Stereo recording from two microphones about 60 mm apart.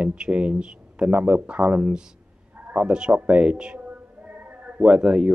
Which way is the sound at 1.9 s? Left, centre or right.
Centre.